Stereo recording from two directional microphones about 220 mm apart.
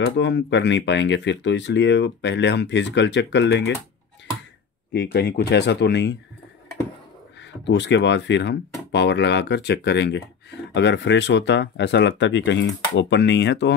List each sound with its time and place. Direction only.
0.0 s speech: 55° left (ahead or behind)
4.9 s speech: 50° left (ahead or behind)
7.3 s speech: 55° left (ahead or behind)